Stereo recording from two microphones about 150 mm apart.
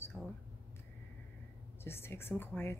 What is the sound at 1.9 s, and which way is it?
Speech, 15° left (ahead or behind).